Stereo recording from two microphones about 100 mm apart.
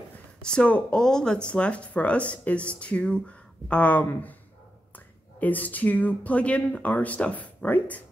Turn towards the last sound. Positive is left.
turn(degrees=15)  # may be behind; listen again after turning